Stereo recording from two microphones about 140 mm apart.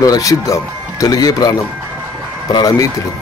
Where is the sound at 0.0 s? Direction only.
25° left (ahead or behind).